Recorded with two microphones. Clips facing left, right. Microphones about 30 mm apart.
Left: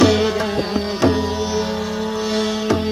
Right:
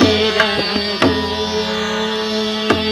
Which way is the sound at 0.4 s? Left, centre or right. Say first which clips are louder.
Right 5 dB; right.